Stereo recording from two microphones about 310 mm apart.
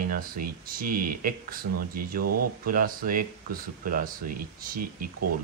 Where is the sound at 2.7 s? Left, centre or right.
Right.